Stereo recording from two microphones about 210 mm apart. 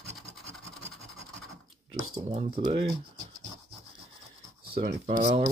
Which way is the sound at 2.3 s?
25° right (ahead or behind).